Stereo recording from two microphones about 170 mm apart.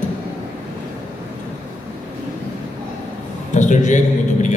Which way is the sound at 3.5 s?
45° left (ahead or behind).